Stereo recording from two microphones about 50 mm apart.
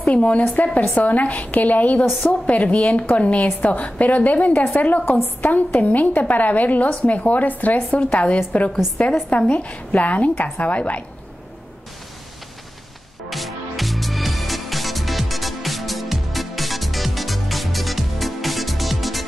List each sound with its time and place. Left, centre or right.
0.1 s a woman's voice: left
13.3 s music: centre